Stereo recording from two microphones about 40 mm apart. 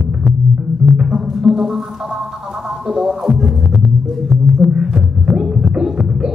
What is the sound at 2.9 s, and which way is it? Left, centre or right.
Music, centre.